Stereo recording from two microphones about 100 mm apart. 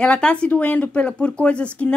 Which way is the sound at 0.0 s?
10° left (ahead or behind).